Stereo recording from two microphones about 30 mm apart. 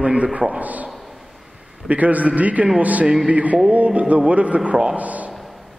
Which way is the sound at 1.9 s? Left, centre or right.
Right.